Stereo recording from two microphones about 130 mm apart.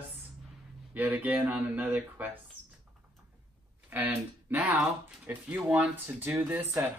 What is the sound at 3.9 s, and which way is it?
Speech, 15° right (ahead or behind).